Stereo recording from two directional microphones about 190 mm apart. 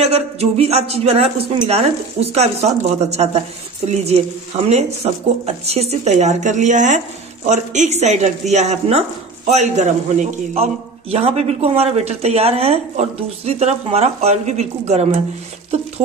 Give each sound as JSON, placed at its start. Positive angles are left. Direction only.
{"t": 0.0, "sound": "a man's voice", "side_deg": -35}